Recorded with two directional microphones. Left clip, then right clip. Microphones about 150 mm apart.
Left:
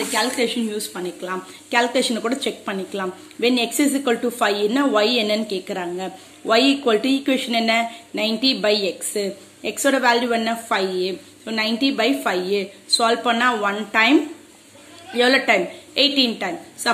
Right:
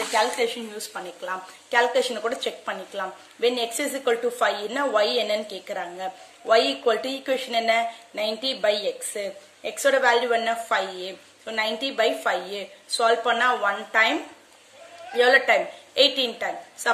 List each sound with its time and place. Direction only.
0.1 s a woman's voice: 10° right (ahead or behind)